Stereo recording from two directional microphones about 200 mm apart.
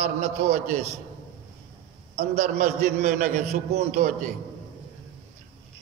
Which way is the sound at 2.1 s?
35° right (ahead or behind).